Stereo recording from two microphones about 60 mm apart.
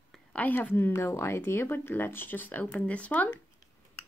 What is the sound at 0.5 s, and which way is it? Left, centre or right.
Speech, left.